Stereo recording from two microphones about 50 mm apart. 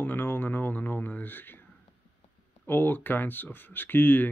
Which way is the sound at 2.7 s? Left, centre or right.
Left.